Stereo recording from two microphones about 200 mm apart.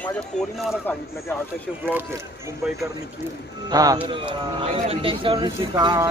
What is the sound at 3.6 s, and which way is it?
Speech, 20° right (ahead or behind).